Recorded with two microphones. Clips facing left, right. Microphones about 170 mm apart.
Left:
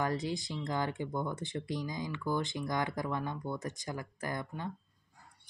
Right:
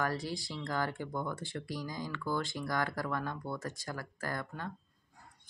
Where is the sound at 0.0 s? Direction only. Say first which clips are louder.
Left 2 dB; 20° left (ahead or behind).